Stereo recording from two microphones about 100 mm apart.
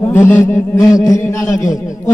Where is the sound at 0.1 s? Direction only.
25° left (ahead or behind).